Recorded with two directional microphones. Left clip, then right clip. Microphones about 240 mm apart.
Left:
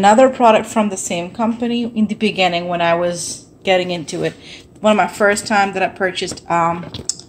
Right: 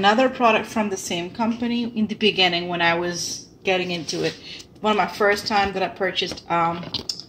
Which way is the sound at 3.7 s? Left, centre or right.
Centre.